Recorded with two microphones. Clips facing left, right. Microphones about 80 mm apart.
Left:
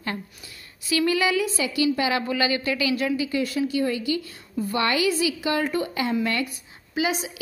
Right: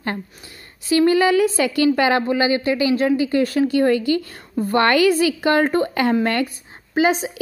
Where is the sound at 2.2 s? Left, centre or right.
Right.